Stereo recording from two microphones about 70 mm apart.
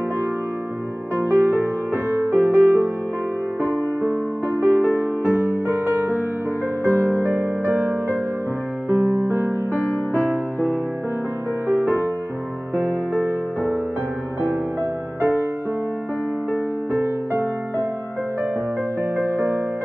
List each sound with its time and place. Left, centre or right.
1.1 s music: right
4.6 s music: right
5.2 s music: left
5.9 s music: right
11.6 s music: right
19.3 s music: right